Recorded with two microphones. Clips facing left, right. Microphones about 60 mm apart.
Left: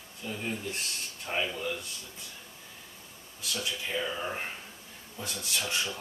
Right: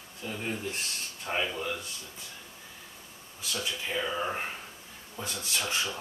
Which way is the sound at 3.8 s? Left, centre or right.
Centre.